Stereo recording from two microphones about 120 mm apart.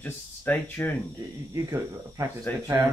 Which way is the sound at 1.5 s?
25° right (ahead or behind).